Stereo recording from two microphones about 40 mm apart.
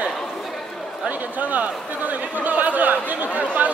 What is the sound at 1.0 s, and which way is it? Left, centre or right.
Chatter, right.